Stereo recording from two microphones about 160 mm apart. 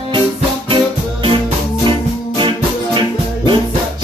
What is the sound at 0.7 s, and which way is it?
Music, 30° right (ahead or behind).